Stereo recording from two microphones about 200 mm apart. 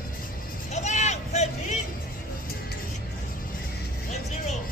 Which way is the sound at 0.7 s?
35° left (ahead or behind).